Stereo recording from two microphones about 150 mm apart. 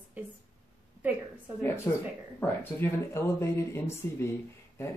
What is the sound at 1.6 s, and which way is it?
Speech, 15° left (ahead or behind).